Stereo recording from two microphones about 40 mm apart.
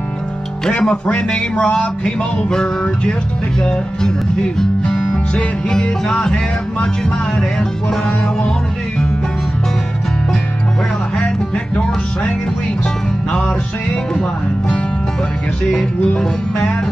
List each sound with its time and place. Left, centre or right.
0.7 s speech: left
11.1 s music: left